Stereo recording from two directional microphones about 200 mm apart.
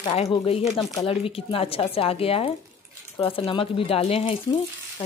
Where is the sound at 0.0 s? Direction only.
30° left (ahead or behind).